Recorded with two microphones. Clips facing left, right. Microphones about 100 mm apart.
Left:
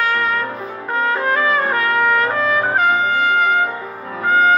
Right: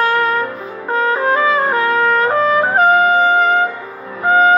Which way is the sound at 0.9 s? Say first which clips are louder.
Right 3 dB; 25° right (ahead or behind).